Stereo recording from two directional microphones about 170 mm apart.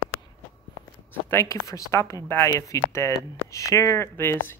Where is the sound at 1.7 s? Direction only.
20° left (ahead or behind).